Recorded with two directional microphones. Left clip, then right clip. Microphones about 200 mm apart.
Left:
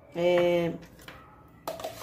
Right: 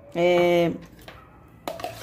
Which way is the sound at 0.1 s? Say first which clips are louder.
Right 4 dB; 50° right (ahead or behind).